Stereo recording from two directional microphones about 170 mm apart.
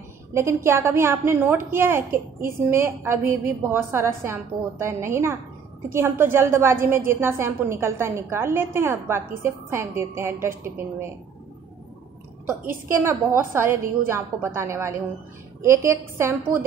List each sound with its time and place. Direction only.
0.3 s a woman's voice: 15° right (ahead or behind)
13.0 s a woman's voice: 15° right (ahead or behind)